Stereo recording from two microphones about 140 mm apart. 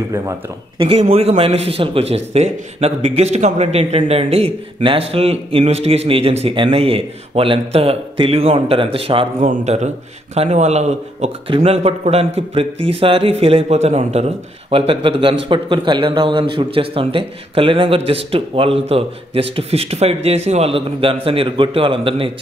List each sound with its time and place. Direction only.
0.7 s a man's voice: 45° right (ahead or behind)
9.4 s a man's voice: 55° right (ahead or behind); by 22.3 s 40° right (ahead or behind)